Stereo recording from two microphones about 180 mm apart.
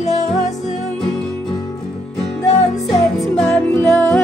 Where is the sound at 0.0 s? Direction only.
40° left (ahead or behind).